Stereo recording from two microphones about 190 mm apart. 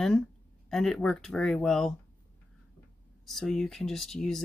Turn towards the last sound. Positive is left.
turn(degrees=0)  # may be behind; listen again after turning